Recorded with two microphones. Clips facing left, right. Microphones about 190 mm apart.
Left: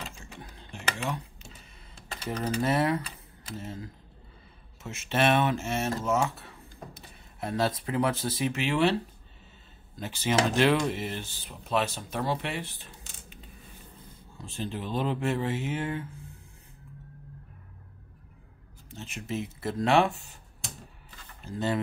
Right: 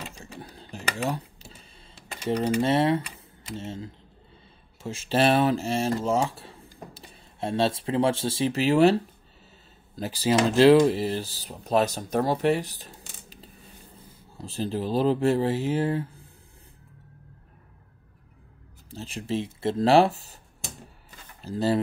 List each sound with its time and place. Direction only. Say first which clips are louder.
0.1 s a sound: right 4 dB; 35° right (ahead or behind)
2.6 s speech: even; 25° right (ahead or behind)
9.9 s speech: right 4 dB; 35° right (ahead or behind)
14.6 s speech: right 6 dB; 35° right (ahead or behind)
18.9 s speech: right 5 dB; 35° right (ahead or behind)
21.4 s speech: right 5 dB; 35° right (ahead or behind)